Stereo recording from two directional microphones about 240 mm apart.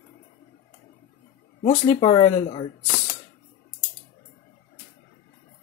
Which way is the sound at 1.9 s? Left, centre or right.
Left.